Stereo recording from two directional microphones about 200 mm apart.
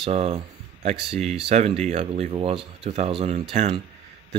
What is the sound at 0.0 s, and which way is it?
Speech, 30° right (ahead or behind).